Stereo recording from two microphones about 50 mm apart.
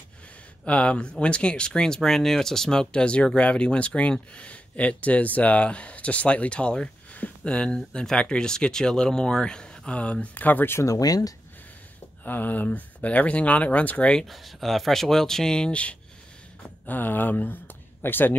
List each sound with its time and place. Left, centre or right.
0.7 s speech: left
7.1 s a sound: left
7.4 s speech: centre; by 10.7 s left
12.3 s speech: left
14.2 s speech: centre; by 16.0 s left
16.8 s speech: left